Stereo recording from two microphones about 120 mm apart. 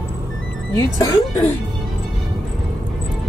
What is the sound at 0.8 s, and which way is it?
Speech, 30° left (ahead or behind).